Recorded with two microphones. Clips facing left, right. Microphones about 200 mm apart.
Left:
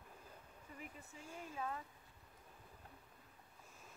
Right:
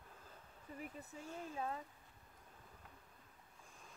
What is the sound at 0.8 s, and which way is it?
Speech, 40° right (ahead or behind).